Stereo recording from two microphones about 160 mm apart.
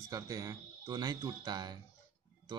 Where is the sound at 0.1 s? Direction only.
20° right (ahead or behind).